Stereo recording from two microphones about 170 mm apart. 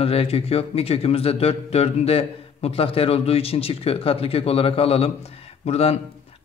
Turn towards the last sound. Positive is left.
turn(degrees=35)  # may be behind; listen again after turning